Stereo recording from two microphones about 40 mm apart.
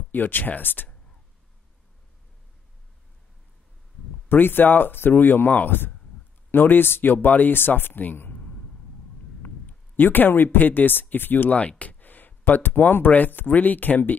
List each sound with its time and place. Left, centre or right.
0.1 s speech: left
4.3 s speech: left
9.4 s a man's voice: left
12.0 s a sound: left
12.4 s speech: left